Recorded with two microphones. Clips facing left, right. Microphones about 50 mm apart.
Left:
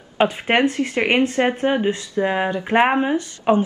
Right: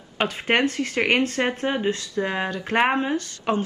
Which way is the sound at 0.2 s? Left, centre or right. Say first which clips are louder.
Left 4 dB; centre.